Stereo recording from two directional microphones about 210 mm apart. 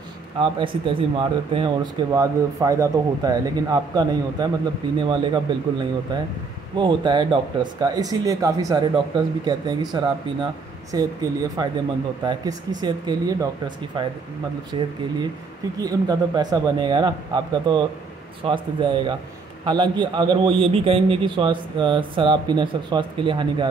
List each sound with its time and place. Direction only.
0.4 s speech: 25° right (ahead or behind)
14.7 s speech: 25° right (ahead or behind)